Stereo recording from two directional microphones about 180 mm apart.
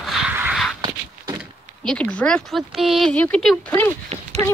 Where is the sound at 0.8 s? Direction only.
25° right (ahead or behind).